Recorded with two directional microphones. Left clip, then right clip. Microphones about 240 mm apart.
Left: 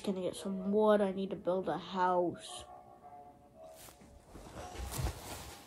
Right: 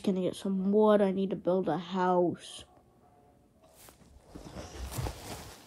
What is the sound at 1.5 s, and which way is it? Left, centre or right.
Speech, right.